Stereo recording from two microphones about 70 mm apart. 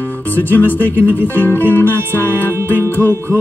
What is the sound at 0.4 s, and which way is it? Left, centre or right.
Music, left.